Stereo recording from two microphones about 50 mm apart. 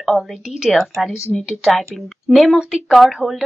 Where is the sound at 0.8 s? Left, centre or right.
Centre.